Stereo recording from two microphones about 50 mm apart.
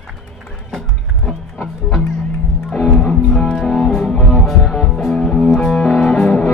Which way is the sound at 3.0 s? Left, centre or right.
Left.